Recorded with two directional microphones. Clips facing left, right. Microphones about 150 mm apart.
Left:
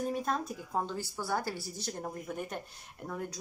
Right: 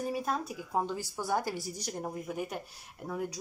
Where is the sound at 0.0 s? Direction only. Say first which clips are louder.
Even; 5° right (ahead or behind).